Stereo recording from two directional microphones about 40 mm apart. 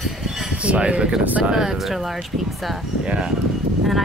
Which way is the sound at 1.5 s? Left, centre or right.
Centre.